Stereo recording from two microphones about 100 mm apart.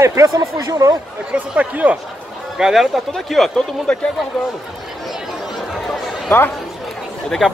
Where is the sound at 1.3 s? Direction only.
15° right (ahead or behind); by 3.9 s centre (ahead or behind).